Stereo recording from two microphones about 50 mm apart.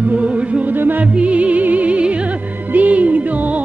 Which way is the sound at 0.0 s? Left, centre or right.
Right.